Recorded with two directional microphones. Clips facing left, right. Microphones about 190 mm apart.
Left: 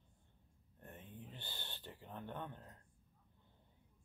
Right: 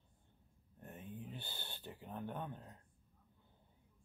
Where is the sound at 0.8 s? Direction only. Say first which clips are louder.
Right 4 dB; 10° right (ahead or behind).